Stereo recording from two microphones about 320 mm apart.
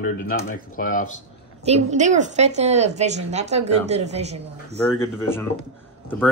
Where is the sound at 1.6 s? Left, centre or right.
Right.